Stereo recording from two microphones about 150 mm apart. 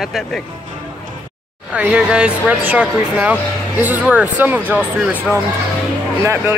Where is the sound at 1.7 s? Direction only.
10° right (ahead or behind).